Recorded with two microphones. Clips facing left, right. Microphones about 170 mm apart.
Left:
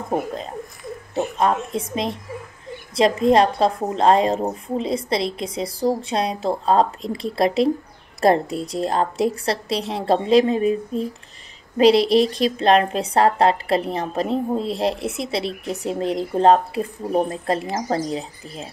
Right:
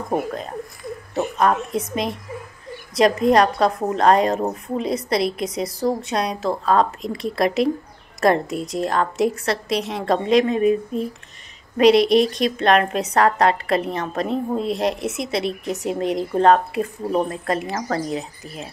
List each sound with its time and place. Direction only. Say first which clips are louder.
1.1 s a woman's voice: right 1 dB; 25° left (ahead or behind)